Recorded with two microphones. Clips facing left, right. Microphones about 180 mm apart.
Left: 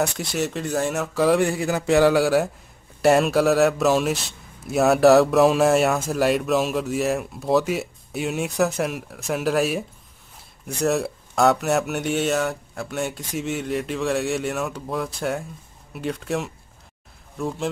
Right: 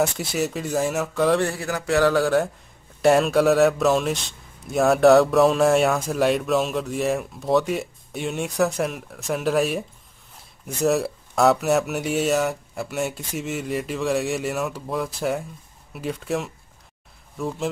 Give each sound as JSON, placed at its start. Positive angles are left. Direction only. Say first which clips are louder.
{"t": 0.0, "sound": "speech", "louder": "right 1 dB", "side_deg": 0}
{"t": 1.4, "sound": "speech", "louder": "left 3 dB", "side_deg": 15}